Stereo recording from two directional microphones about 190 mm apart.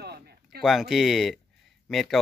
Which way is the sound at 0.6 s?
Centre (ahead or behind).